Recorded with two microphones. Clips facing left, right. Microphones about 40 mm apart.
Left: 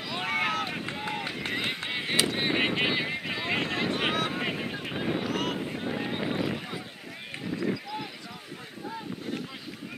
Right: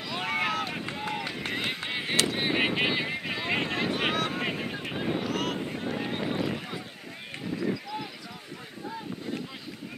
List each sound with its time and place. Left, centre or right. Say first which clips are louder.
0.1 s vehicle: even; centre
1.1 s run: left 1 dB; centre
2.1 s vehicle: even; centre
7.4 s a sound: even; centre